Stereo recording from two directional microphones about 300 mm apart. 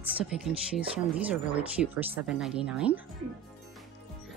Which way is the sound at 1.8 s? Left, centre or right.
Centre.